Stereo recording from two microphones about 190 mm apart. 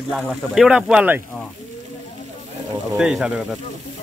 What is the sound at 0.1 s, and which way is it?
Speech, centre (ahead or behind).